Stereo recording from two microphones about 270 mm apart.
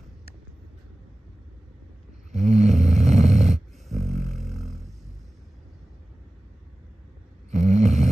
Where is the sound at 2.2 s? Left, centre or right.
Right.